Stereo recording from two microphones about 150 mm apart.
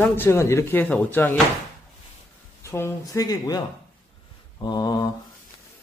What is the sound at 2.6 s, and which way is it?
Speech, 20° left (ahead or behind).